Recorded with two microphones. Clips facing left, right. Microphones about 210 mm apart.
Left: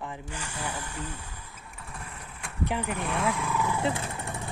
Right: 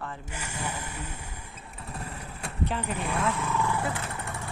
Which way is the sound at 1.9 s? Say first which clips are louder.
Right 5 dB; 35° right (ahead or behind).